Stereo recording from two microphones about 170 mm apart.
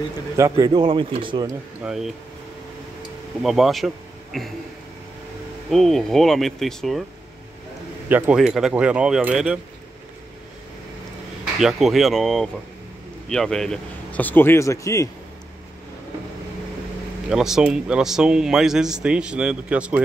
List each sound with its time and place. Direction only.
0.4 s speech: 25° right (ahead or behind)
1.8 s speech: 5° right (ahead or behind)
3.4 s speech: centre (ahead or behind)
5.7 s speech: centre (ahead or behind)
8.1 s speech: 5° right (ahead or behind)
11.6 s speech: centre (ahead or behind); by 15.0 s 20° left (ahead or behind)
17.3 s speech: 5° right (ahead or behind)